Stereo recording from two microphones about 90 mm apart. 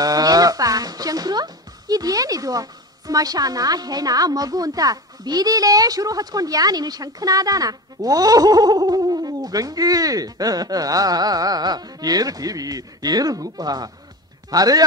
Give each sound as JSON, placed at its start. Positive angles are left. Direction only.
{"t": 0.0, "sound": "speech", "side_deg": -45}